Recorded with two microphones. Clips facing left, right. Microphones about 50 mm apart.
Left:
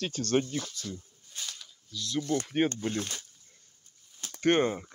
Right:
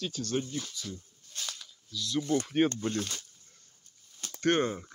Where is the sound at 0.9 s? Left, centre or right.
Centre.